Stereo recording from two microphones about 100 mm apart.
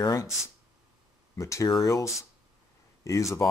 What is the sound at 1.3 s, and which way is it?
Speech, 30° left (ahead or behind).